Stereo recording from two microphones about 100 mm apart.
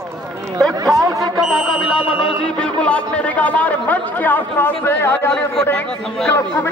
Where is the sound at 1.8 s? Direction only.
65° left (ahead or behind).